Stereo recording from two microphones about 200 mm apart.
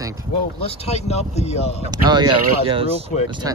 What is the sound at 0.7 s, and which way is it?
Speech, 30° left (ahead or behind).